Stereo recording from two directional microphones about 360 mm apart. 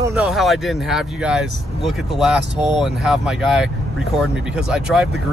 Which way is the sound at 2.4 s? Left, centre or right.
Right.